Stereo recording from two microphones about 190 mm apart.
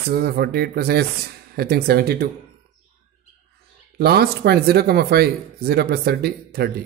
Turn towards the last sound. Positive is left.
turn(degrees=-55)  # may be behind; listen again after turning